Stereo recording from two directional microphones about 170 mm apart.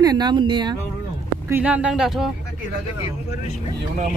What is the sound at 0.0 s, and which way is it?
Speech, 25° right (ahead or behind).